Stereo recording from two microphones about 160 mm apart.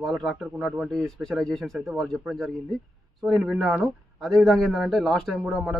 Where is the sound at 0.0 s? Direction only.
Centre (ahead or behind).